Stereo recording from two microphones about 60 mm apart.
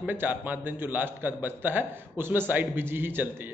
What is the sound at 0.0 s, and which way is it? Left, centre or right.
A man's voice, right.